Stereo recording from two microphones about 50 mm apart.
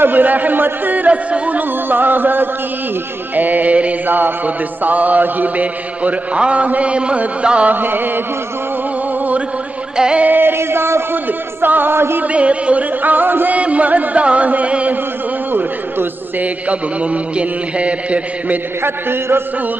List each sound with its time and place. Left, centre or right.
0.0 s a man's voice: right
1.9 s a man's voice: right
4.8 s mantra: right
7.7 s a man's voice: right
9.9 s music: centre
10.2 s music: right
10.6 s a sound: right
11.6 s a man's voice: right
12.2 s mantra: right
13.0 s a man's voice: right
13.6 s mantra: right
15.5 s a man's voice: right
16.6 s mantra: right
18.8 s a man's voice: right